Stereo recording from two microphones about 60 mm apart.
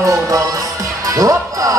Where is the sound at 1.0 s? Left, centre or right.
Right.